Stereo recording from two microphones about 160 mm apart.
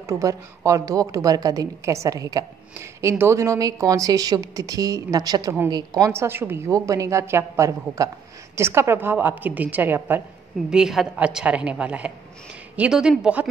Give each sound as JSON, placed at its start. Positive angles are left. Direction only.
{"t": 0.0, "sound": "a woman's voice", "side_deg": -20}